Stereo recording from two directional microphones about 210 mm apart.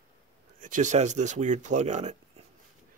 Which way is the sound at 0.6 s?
35° right (ahead or behind).